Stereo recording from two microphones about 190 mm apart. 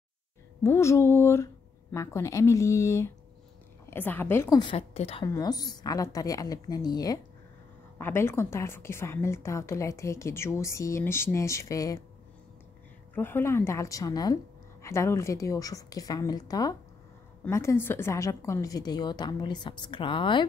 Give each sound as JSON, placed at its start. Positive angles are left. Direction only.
{"t": 0.7, "sound": "a woman's voice", "side_deg": 15}
{"t": 4.6, "sound": "a woman's voice", "side_deg": 30}
{"t": 5.2, "sound": "a woman's voice", "side_deg": 20}
{"t": 13.1, "sound": "a woman's voice", "side_deg": 10}